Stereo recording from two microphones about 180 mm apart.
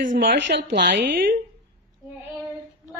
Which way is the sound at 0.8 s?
55° right (ahead or behind).